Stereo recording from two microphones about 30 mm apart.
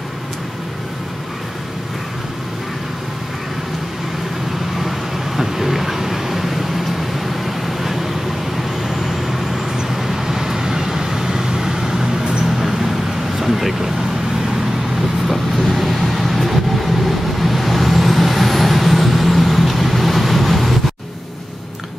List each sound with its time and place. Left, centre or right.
5.4 s vehicle: centre
15.2 s vehicle: centre